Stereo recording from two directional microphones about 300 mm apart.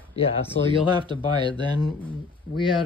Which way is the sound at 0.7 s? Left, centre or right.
Centre.